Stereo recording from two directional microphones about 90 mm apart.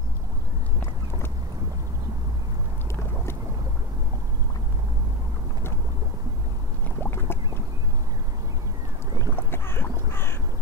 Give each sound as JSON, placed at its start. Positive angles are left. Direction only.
{"t": 7.0, "sound": "boat", "side_deg": 25}
{"t": 9.3, "sound": "crow", "side_deg": 25}